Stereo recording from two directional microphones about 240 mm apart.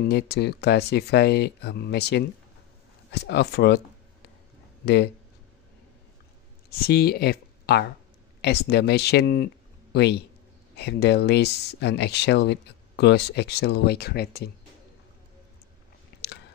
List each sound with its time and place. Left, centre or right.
0.1 s speech: left
4.8 s speech: left
6.8 s speech: left